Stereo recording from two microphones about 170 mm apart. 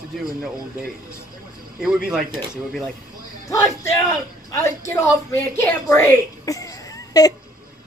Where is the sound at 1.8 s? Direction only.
5° right (ahead or behind).